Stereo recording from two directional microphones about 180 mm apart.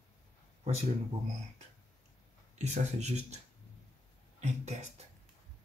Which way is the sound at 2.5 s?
40° right (ahead or behind).